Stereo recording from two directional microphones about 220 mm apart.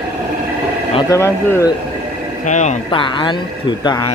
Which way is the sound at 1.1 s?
15° left (ahead or behind).